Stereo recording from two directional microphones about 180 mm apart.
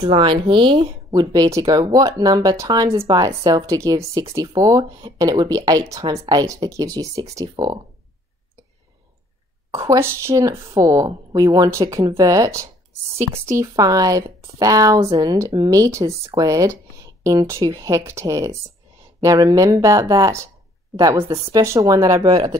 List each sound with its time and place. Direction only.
0.0 s speech: 30° right (ahead or behind)
9.7 s speech: 15° right (ahead or behind)